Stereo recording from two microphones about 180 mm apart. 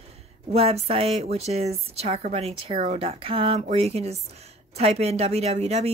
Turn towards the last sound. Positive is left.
turn(degrees=-35)  # may be behind; listen again after turning